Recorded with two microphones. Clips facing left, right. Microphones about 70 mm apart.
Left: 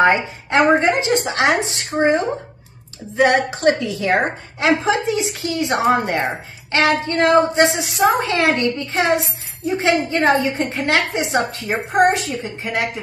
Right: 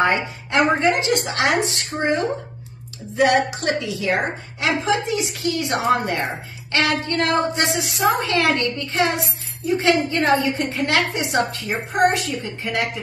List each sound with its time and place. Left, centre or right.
0.0 s a woman's voice: left
3.2 s a woman's voice: left